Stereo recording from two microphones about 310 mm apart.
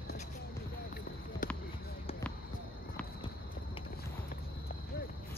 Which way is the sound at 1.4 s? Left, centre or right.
Left.